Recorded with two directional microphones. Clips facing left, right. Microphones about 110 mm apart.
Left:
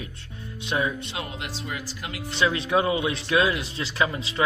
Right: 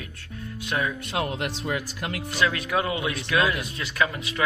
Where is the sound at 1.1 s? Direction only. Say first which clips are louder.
Right 6 dB; 60° right (ahead or behind).